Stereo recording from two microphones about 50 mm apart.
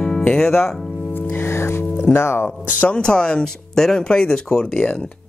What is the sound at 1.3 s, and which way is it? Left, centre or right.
Music, left.